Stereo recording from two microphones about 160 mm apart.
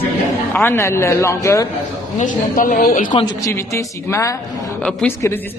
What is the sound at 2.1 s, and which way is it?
A woman's voice, 55° left (ahead or behind).